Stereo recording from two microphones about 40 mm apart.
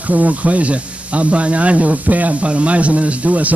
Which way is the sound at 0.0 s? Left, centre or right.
Right.